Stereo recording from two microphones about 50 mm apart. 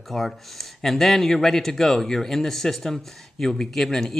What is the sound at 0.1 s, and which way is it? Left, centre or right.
Speech, centre.